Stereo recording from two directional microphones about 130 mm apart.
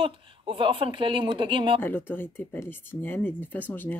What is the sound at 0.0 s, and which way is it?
Speech, 40° right (ahead or behind).